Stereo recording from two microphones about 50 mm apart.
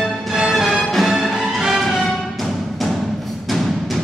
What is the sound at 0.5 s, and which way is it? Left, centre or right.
Music, centre.